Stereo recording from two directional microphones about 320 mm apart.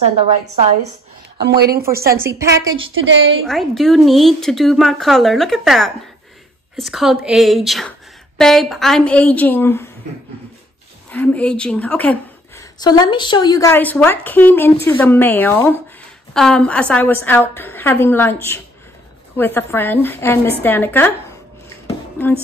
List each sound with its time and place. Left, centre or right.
1.4 s a woman's voice: right
2.1 s a woman's voice: centre
2.7 s a woman's voice: right
3.4 s a woman's voice: centre
11.1 s a woman's voice: centre
22.2 s a woman's voice: centre